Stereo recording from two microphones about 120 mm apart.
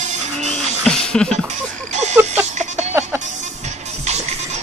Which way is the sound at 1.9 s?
70° right (ahead or behind).